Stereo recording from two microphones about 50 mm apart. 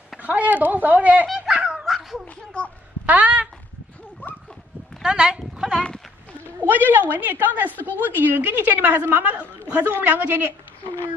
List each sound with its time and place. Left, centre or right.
0.2 s speech: right
1.2 s dog: centre
1.9 s a sound: centre
2.2 s a sound: left
3.1 s speech: right
5.0 s a sound: centre
6.6 s a woman's voice: right
9.3 s a woman's voice: right
9.8 s a woman's voice: right